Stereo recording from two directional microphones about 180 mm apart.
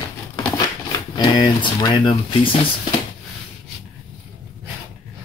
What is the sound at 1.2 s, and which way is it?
Speech, 25° left (ahead or behind).